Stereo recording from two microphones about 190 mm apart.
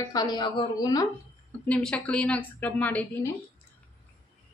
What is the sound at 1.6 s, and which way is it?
A woman's voice, 5° left (ahead or behind).